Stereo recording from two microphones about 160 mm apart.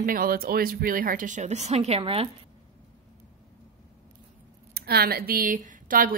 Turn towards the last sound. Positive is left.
turn(degrees=-60)  # may be behind; listen again after turning